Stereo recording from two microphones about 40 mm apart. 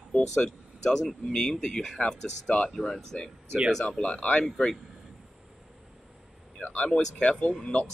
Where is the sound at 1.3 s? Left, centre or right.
Centre.